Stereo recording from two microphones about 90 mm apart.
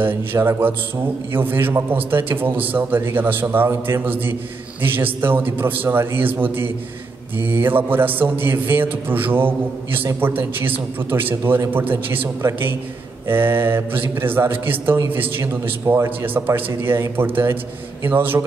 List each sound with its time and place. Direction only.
0.0 s a man's voice: 25° right (ahead or behind)